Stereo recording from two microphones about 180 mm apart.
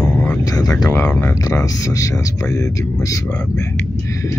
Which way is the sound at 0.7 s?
10° left (ahead or behind).